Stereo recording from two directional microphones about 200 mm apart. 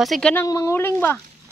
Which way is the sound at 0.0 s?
Centre (ahead or behind).